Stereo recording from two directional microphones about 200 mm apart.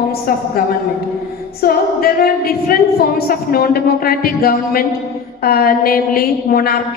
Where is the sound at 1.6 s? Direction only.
50° left (ahead or behind).